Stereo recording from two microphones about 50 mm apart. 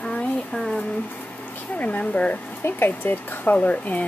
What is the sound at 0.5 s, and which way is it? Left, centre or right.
Speech, centre.